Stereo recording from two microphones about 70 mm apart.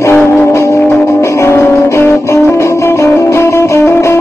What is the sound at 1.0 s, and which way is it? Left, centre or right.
Music, left.